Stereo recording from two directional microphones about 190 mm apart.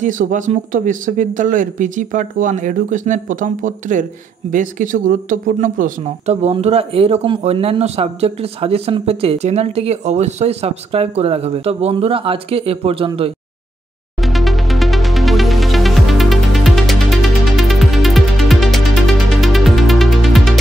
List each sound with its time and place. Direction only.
0.0 s speech: 45° right (ahead or behind)
14.2 s music: centre (ahead or behind)